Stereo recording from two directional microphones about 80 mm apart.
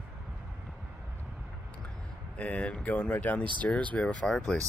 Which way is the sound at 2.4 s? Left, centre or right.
Centre.